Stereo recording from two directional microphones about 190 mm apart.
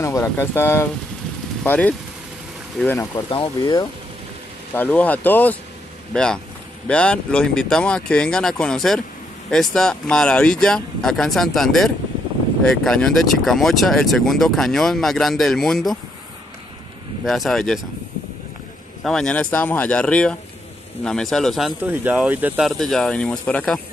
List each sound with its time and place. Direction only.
0.0 s speech: 15° left (ahead or behind)
3.2 s speech: 25° left (ahead or behind)
4.7 s speech: 10° left (ahead or behind)
17.2 s speech: centre (ahead or behind)
19.0 s speech: 5° left (ahead or behind)